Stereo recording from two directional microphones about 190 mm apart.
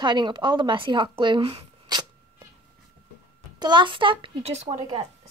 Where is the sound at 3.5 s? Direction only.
25° right (ahead or behind).